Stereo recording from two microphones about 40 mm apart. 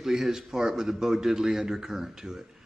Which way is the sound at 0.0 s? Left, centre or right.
Centre.